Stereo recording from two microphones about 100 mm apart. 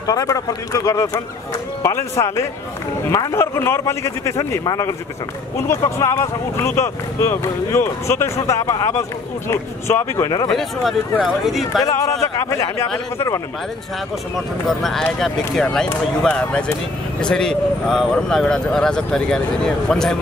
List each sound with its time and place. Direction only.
0.0 s speech: 35° left (ahead or behind)
10.5 s speech: centre (ahead or behind)
11.8 s speech: 35° left (ahead or behind)
14.7 s speech: centre (ahead or behind)